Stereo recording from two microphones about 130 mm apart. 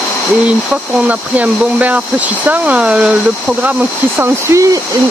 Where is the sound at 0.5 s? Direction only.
10° right (ahead or behind).